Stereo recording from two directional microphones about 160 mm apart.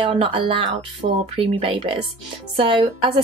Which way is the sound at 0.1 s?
35° right (ahead or behind).